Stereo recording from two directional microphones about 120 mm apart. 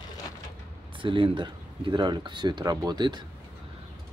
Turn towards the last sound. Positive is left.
turn(degrees=-35)  # may be behind; listen again after turning